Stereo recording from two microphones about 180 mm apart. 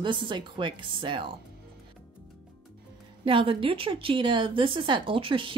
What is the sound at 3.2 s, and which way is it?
Speech, 30° right (ahead or behind).